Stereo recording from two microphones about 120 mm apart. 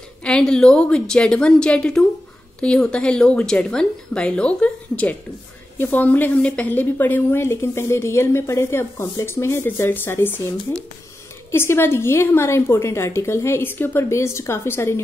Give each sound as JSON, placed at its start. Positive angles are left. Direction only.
{"t": 0.2, "sound": "a woman's voice", "side_deg": 5}
{"t": 11.5, "sound": "a woman's voice", "side_deg": 20}